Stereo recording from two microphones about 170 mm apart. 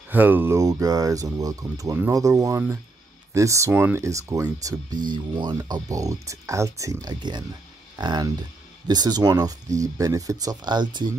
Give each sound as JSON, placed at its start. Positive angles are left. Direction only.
{"t": 0.1, "sound": "speech", "side_deg": -10}